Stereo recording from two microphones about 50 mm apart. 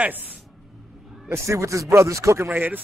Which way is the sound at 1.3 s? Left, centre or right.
Right.